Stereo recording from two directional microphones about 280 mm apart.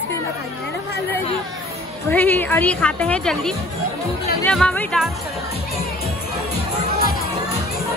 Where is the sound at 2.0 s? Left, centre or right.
Centre.